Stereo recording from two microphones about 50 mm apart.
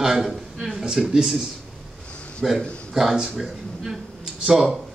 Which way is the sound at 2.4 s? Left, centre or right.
Centre.